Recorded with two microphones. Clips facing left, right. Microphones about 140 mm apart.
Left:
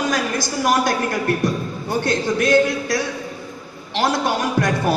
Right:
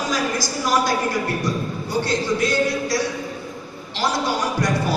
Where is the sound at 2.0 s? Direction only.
55° left (ahead or behind).